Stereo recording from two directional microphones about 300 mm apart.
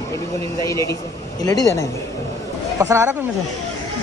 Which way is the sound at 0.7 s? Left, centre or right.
Centre.